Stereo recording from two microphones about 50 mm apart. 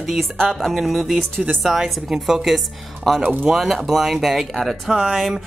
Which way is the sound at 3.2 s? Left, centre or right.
Right.